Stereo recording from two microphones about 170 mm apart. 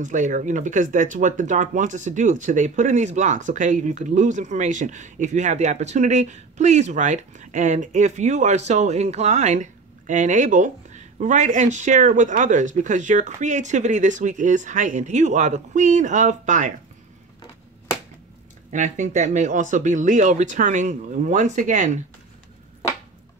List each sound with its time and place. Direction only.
0.0 s speech: 45° right (ahead or behind)
18.7 s speech: 45° right (ahead or behind)